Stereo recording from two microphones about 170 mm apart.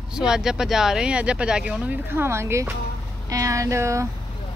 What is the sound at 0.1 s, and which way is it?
Speech, 5° right (ahead or behind).